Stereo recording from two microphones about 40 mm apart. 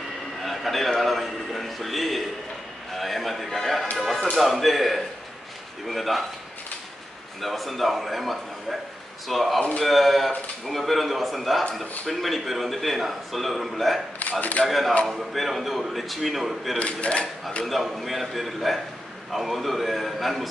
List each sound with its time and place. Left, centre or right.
0.4 s a man's voice: centre
7.4 s a man's voice: centre
16.7 s speech: left
17.6 s a man's voice: centre